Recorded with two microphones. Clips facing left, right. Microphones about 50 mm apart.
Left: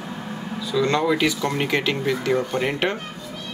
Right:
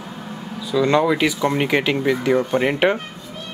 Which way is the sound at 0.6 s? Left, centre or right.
Centre.